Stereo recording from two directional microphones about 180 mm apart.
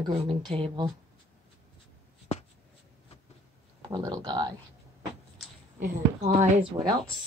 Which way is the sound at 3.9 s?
25° right (ahead or behind).